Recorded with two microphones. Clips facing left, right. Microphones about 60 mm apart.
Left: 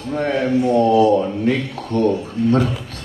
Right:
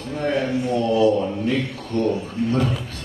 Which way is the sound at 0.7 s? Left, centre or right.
Left.